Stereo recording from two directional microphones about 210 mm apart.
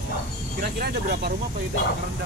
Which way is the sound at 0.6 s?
50° right (ahead or behind).